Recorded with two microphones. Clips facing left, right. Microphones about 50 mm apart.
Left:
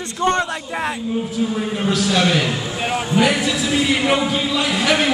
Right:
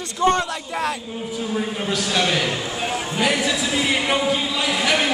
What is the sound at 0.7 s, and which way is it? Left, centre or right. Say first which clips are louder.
Speech: left 1 dB; left.